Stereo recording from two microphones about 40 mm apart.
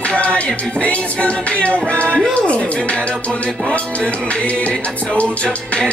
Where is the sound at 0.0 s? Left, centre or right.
Left.